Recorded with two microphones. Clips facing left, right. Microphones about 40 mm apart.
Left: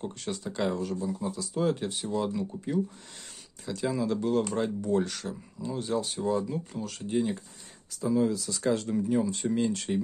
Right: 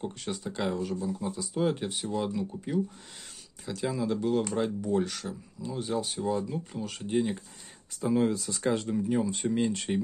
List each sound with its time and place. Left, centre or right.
0.0 s speech: centre
7.9 s speech: right
8.7 s speech: centre